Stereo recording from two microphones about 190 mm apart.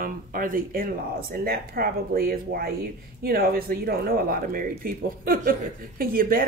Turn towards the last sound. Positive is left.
turn(degrees=-50)  # may be behind; listen again after turning